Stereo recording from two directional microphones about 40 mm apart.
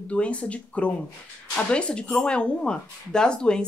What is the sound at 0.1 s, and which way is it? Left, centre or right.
Speech, left.